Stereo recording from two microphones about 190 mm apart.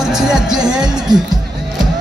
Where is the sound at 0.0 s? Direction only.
5° right (ahead or behind).